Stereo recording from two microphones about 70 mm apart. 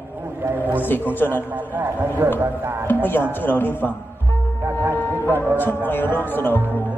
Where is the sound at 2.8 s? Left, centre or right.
Left.